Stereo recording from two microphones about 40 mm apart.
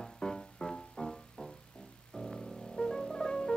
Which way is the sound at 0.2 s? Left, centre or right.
Centre.